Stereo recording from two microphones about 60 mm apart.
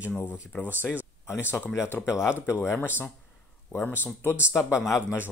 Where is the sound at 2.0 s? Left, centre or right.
Left.